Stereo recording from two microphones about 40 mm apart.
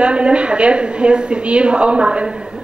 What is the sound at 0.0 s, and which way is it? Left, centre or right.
A woman's voice, right.